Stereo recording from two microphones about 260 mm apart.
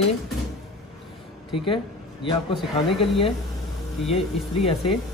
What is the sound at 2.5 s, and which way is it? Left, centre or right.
Speech, centre.